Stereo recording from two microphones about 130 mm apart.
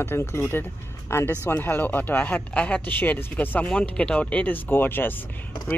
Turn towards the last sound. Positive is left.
turn(degrees=15)  # may be behind; listen again after turning